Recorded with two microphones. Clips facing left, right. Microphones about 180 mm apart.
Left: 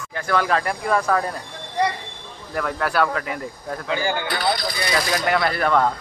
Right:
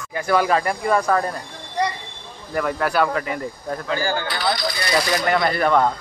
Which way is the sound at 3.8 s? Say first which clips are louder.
Even; 20° left (ahead or behind).